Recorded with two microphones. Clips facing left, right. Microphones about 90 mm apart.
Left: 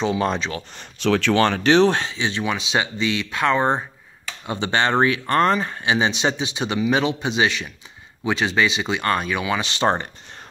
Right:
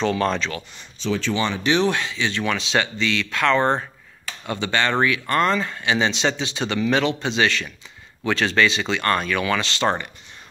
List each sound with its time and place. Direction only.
0.0 s speech: 10° left (ahead or behind)
1.0 s speech: 65° left (ahead or behind)
1.6 s speech: 35° left (ahead or behind); by 3.8 s 10° left (ahead or behind)
4.5 s speech: 20° left (ahead or behind)